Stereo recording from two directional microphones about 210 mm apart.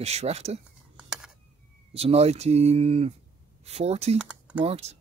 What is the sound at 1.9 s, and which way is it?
Speech, 30° right (ahead or behind).